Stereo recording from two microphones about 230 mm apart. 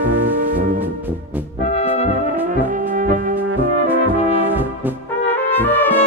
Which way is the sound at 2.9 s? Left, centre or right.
Right.